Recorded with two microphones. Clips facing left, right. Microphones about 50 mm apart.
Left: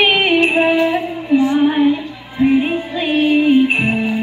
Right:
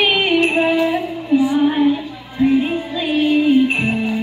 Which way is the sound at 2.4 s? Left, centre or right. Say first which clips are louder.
Left 1 dB; left.